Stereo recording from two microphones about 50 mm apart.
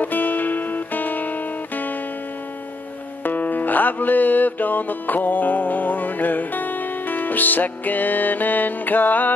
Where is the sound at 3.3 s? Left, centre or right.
Left.